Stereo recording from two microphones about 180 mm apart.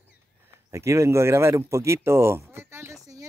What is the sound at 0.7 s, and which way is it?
Speech, 15° right (ahead or behind).